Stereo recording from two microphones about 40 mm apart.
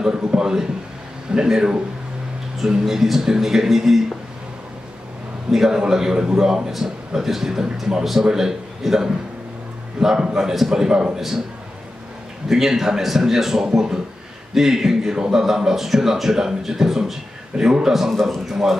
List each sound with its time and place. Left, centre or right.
0.0 s a man's voice: centre
2.8 s speech: centre
5.5 s a man's voice: centre
10.7 s speech: centre
12.4 s speech: centre
18.1 s a man's voice: centre